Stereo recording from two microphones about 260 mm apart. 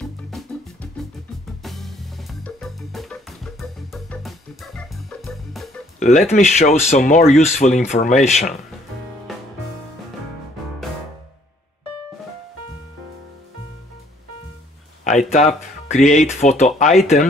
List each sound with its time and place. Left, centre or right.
0.0 s music: centre
1.6 s music: centre
5.9 s speech: left
15.0 s speech: left